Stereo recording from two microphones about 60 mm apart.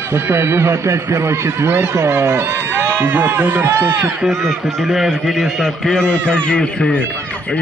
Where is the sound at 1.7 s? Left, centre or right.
Right.